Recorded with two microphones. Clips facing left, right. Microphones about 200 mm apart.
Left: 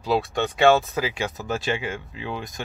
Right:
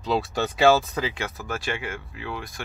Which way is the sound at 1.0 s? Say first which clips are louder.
Left 2 dB; 10° left (ahead or behind).